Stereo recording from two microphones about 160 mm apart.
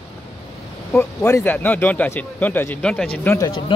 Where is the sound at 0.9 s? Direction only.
15° left (ahead or behind).